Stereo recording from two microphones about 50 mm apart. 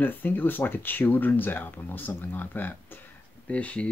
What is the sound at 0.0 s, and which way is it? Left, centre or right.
Speech, left.